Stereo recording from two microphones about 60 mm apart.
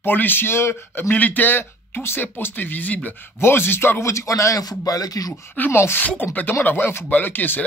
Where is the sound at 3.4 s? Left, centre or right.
Left.